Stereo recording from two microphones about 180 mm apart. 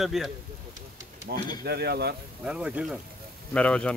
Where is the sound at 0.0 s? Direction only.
Centre (ahead or behind).